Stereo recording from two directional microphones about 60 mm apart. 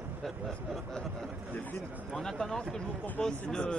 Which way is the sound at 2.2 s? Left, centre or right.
Centre.